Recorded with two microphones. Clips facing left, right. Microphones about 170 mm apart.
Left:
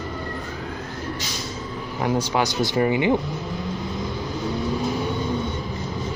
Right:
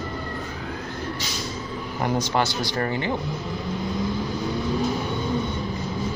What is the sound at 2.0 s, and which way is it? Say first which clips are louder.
Speech: left 1 dB; 5° left (ahead or behind).